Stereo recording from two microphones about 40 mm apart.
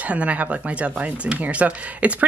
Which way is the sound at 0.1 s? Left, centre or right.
Right.